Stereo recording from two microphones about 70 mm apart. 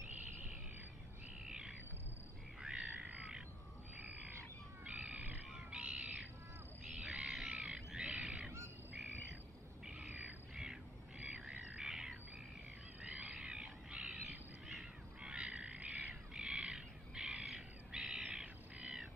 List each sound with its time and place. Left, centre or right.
1.4 s bird: centre
2.6 s frog: centre
4.8 s crow: centre
5.3 s wild animals: centre
7.0 s bird: centre
9.8 s bird: centre
10.5 s squawk: centre
13.0 s crow: centre